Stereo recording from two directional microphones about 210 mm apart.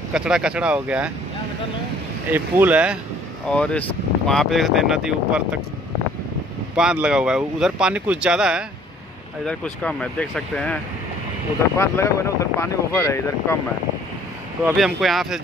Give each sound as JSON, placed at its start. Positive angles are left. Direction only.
{"t": 0.1, "sound": "speech", "side_deg": -5}
{"t": 2.3, "sound": "speech", "side_deg": -10}
{"t": 3.4, "sound": "speech", "side_deg": 5}
{"t": 6.7, "sound": "speech", "side_deg": -5}
{"t": 11.8, "sound": "speech", "side_deg": 15}
{"t": 14.8, "sound": "speech", "side_deg": 0}